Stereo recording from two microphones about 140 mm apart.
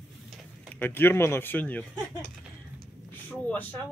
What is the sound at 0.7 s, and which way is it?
Speech, 15° left (ahead or behind).